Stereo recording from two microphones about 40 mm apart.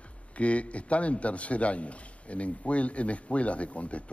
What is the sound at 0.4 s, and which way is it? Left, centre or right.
A man's voice, left.